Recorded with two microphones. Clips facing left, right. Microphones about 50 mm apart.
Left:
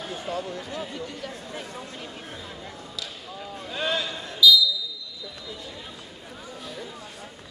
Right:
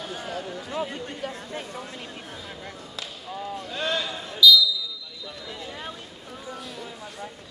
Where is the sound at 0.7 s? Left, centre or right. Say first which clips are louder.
Right 3 dB; right.